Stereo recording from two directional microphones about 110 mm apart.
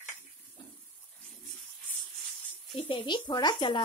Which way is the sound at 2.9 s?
45° left (ahead or behind).